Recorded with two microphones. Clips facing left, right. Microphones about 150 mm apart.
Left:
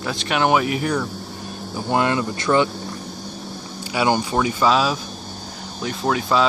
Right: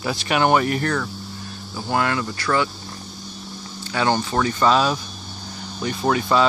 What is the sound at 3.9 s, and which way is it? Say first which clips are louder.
Speech: left 1 dB; 10° left (ahead or behind).